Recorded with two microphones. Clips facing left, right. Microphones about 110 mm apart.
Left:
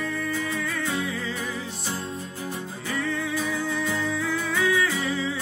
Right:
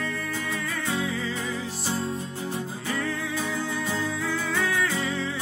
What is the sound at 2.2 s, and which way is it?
Music, 25° right (ahead or behind).